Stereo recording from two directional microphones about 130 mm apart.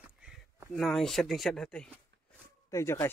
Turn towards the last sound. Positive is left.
turn(degrees=20)  # may be behind; listen again after turning